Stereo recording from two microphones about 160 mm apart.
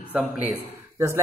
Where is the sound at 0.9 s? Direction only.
20° right (ahead or behind).